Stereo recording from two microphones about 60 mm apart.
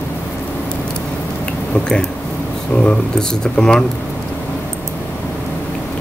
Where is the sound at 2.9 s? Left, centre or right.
Centre.